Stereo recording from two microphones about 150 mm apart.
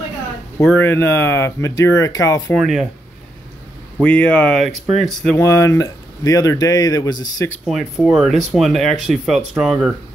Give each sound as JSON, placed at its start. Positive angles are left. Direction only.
{"t": 0.7, "sound": "speech", "side_deg": 15}
{"t": 2.5, "sound": "speech", "side_deg": 0}
{"t": 4.0, "sound": "speech", "side_deg": 10}
{"t": 5.4, "sound": "speech", "side_deg": 20}
{"t": 7.6, "sound": "speech", "side_deg": 0}